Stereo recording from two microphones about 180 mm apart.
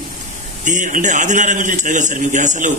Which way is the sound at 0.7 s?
45° right (ahead or behind).